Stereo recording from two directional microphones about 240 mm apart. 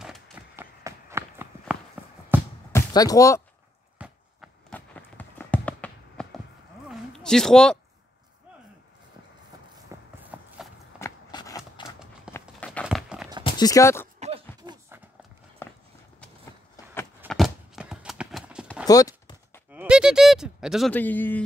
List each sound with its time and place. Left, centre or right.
0.0 s run: centre
0.8 s walk: centre
2.3 s music: centre
2.7 s speech: centre
4.0 s run: centre
6.9 s a sound: centre
9.8 s walk: centre
11.0 s a sound: centre
13.4 s clip-clop: centre
14.2 s a sound: right
17.3 s clip-clop: centre
18.9 s clip-clop: centre
19.7 s a sound: centre